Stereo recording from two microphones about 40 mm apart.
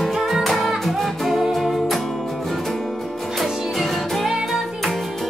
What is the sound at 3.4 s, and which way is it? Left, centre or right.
Music, centre.